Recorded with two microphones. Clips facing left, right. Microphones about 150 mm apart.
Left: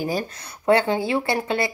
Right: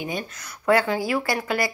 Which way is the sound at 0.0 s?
35° left (ahead or behind).